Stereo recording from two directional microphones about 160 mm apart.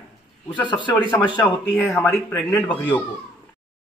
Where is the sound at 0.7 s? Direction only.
30° left (ahead or behind).